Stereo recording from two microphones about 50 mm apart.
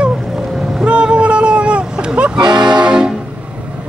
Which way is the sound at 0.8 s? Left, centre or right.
Right.